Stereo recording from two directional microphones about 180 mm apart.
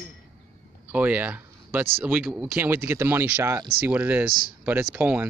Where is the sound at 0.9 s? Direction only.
10° right (ahead or behind).